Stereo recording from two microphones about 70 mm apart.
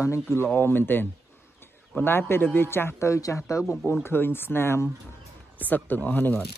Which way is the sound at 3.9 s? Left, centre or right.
Left.